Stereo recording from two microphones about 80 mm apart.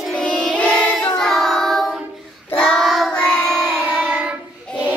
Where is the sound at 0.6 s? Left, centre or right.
Centre.